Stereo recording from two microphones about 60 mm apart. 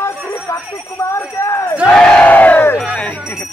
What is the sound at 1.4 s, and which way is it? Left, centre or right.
Battle cry, left.